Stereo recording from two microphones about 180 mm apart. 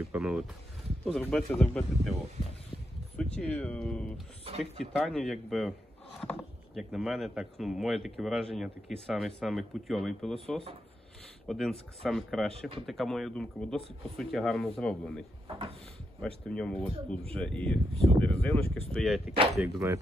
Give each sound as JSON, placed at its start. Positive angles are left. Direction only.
{"t": 0.1, "sound": "speech", "side_deg": -5}
{"t": 3.2, "sound": "speech", "side_deg": 5}
{"t": 12.5, "sound": "speech", "side_deg": -30}
{"t": 12.8, "sound": "speech", "side_deg": 0}
{"t": 15.4, "sound": "speech", "side_deg": -30}
{"t": 16.2, "sound": "speech", "side_deg": 5}
{"t": 17.9, "sound": "speech", "side_deg": -30}
{"t": 18.2, "sound": "speech", "side_deg": 5}